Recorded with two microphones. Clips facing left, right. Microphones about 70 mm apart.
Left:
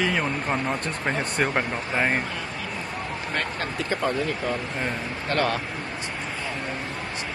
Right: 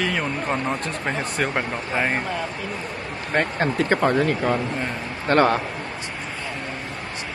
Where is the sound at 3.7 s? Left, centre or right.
Right.